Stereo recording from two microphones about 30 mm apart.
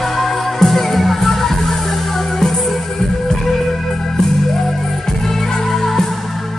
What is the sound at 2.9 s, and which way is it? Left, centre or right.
Music, centre.